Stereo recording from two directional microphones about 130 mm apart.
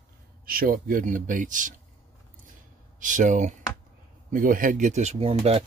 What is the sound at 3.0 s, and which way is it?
Speech, 75° right (ahead or behind).